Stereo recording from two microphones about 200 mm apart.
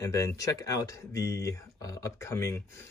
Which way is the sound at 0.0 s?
15° left (ahead or behind).